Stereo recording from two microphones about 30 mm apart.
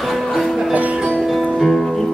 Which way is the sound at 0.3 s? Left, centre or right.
Centre.